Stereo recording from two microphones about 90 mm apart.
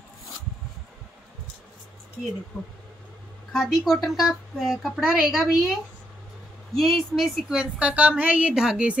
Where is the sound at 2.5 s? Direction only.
30° left (ahead or behind).